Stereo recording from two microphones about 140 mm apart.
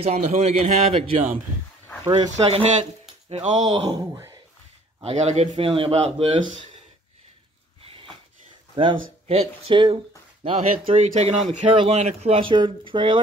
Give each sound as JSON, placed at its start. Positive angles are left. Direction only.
{"t": 0.0, "sound": "speech", "side_deg": -50}
{"t": 2.0, "sound": "speech", "side_deg": -30}
{"t": 2.3, "sound": "speech", "side_deg": -50}
{"t": 3.6, "sound": "speech", "side_deg": -25}
{"t": 5.0, "sound": "speech", "side_deg": -50}
{"t": 7.8, "sound": "a sound", "side_deg": -40}
{"t": 8.7, "sound": "speech", "side_deg": -45}